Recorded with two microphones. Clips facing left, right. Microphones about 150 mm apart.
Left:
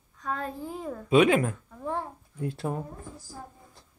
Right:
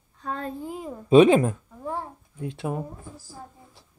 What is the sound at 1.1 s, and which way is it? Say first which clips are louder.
Speech: right 6 dB; 25° right (ahead or behind).